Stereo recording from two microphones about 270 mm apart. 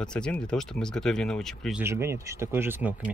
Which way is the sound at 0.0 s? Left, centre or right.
Centre.